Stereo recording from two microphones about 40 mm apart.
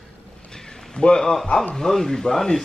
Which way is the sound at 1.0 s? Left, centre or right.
Left.